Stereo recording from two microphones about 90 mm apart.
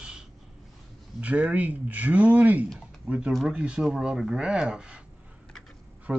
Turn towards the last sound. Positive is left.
turn(degrees=-10)  # may be behind; listen again after turning